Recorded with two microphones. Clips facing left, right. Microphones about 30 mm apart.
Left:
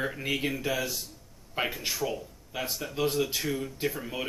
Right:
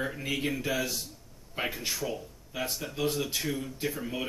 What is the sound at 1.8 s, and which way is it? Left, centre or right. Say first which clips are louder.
Speech: left 2 dB; centre.